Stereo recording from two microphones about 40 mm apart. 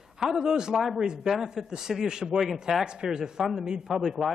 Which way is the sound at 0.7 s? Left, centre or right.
Centre.